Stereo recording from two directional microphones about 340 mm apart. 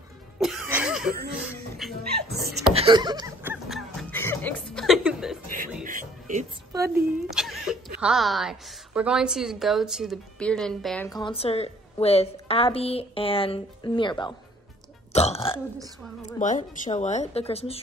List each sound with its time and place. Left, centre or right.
0.4 s music: centre
1.8 s speech: centre
2.1 s a sound: right
2.7 s snicker: centre
5.9 s music: right
7.2 s a sound: centre
8.0 s a woman's voice: centre
15.1 s burping: centre
16.3 s speech: left